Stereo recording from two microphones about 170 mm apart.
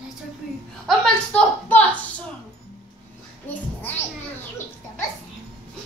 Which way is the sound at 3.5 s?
10° left (ahead or behind).